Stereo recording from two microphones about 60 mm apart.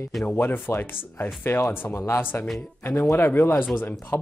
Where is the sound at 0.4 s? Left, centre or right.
Left.